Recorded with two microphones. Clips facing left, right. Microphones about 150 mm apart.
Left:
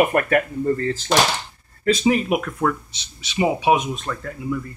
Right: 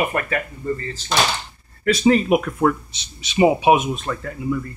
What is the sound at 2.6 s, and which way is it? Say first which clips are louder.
Speech: right 3 dB; 25° right (ahead or behind).